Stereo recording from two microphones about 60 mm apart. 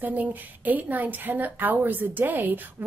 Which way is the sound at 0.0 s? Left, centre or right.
Right.